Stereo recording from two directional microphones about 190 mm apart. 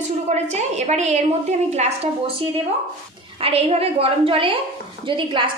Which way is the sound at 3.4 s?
30° right (ahead or behind).